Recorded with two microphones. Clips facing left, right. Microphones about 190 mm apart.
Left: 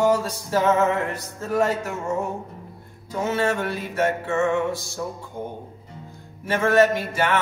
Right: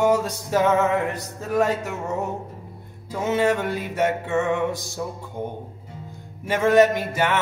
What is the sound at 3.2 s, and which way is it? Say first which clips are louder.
Music: right 2 dB; 20° right (ahead or behind).